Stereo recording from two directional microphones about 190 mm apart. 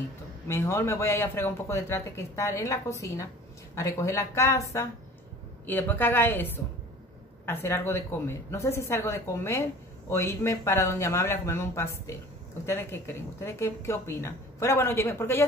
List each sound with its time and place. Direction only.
0.5 s speech: 15° left (ahead or behind)